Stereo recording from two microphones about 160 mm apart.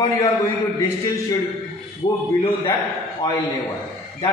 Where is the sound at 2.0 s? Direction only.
30° left (ahead or behind).